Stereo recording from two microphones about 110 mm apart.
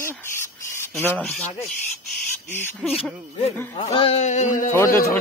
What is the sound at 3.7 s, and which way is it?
Speech, 55° left (ahead or behind).